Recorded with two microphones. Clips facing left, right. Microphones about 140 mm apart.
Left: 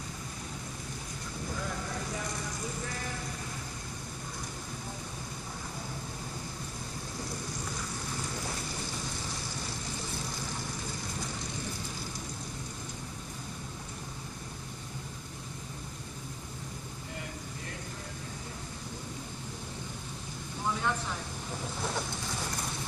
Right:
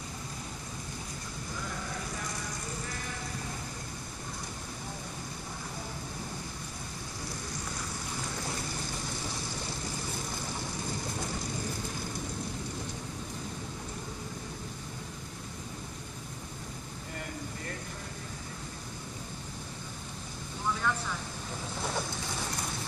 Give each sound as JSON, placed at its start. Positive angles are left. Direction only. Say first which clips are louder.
{"t": 20.9, "sound": "vehicle", "louder": "right 1 dB", "side_deg": 20}